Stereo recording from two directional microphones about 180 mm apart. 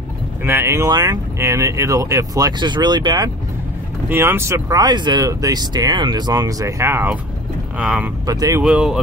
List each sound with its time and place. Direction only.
0.4 s speech: 15° right (ahead or behind)
4.1 s speech: 15° right (ahead or behind)
8.3 s speech: 20° right (ahead or behind)
8.6 s speech: 5° right (ahead or behind)